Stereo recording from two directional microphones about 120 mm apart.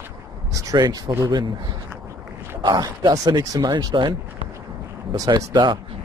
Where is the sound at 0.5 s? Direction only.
30° right (ahead or behind).